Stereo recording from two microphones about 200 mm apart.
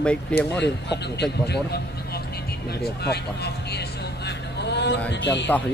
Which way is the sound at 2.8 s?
55° left (ahead or behind).